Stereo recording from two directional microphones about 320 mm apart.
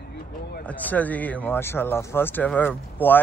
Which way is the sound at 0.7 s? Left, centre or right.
Centre.